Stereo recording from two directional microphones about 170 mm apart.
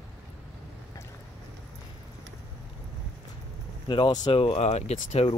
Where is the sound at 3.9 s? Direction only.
25° left (ahead or behind).